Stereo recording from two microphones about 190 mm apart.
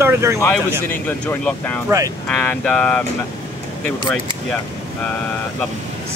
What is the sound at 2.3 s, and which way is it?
Speech, 5° left (ahead or behind).